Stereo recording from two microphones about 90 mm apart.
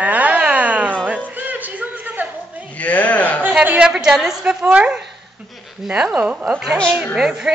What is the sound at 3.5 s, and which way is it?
A woman's voice, 15° right (ahead or behind).